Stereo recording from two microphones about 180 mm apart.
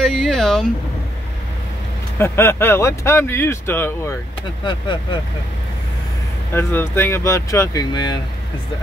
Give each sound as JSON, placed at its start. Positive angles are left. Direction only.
{"t": 0.0, "sound": "speech", "side_deg": 0}
{"t": 2.1, "sound": "speech", "side_deg": 15}
{"t": 4.6, "sound": "speech", "side_deg": 25}
{"t": 6.5, "sound": "speech", "side_deg": 15}